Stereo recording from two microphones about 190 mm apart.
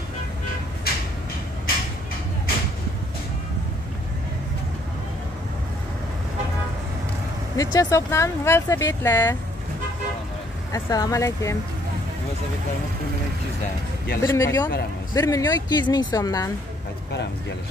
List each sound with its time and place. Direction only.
0.9 s a sound: 55° left (ahead or behind)
7.5 s speech: 20° left (ahead or behind)
10.7 s speech: 20° left (ahead or behind)
14.2 s speech: 15° left (ahead or behind)